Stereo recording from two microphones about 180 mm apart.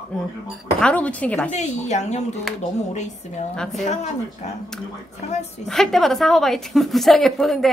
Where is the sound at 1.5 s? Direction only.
40° left (ahead or behind).